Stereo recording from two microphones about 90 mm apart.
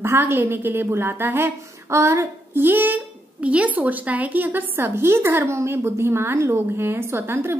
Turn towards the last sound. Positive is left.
turn(degrees=-25)  # may be behind; listen again after turning